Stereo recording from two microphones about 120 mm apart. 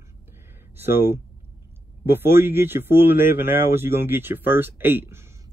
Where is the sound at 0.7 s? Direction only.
20° right (ahead or behind).